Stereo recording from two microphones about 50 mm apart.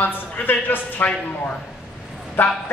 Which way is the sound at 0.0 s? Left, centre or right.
Left.